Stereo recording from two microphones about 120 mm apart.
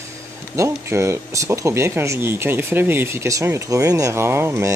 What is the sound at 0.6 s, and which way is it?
Speech, 25° right (ahead or behind).